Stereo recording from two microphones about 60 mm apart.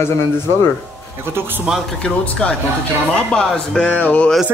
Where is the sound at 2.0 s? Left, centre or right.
Centre.